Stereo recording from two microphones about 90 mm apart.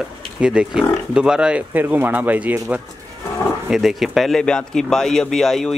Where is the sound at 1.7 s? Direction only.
20° right (ahead or behind).